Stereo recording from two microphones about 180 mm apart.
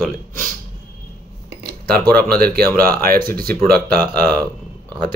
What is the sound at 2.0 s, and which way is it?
Speech, 10° left (ahead or behind).